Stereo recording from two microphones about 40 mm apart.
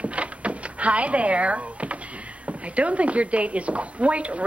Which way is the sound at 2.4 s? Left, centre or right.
Right.